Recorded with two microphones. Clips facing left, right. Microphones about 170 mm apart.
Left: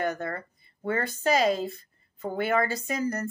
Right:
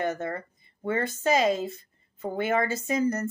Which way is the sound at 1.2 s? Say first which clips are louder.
Even; 20° right (ahead or behind).